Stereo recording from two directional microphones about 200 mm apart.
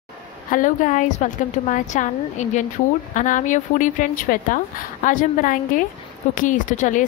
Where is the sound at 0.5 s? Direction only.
40° left (ahead or behind).